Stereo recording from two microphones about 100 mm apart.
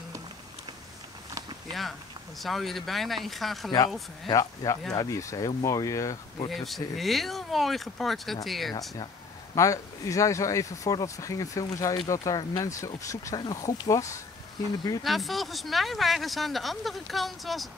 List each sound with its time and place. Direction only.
1.7 s speech: centre (ahead or behind)
4.3 s speech: 35° left (ahead or behind)
6.5 s speech: centre (ahead or behind)
9.6 s speech: 35° left (ahead or behind)
15.0 s speech: centre (ahead or behind)